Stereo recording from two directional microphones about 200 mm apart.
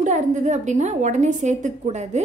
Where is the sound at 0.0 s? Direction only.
35° right (ahead or behind).